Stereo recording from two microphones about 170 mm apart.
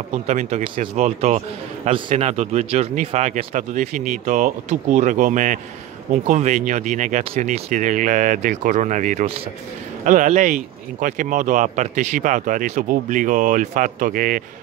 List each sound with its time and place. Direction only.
0.1 s speech: 40° right (ahead or behind)